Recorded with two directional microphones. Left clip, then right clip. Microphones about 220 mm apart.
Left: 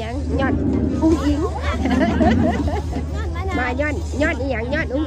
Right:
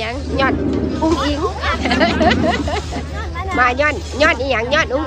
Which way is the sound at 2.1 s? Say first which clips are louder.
Right 4 dB; 35° left (ahead or behind).